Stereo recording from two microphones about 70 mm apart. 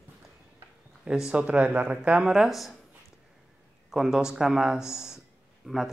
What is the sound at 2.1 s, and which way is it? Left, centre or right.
Speech, centre.